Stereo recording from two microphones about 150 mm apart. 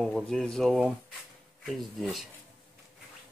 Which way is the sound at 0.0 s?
5° left (ahead or behind).